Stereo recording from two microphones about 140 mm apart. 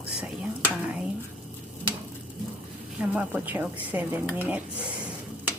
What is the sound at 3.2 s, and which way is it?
A woman's voice, 10° right (ahead or behind).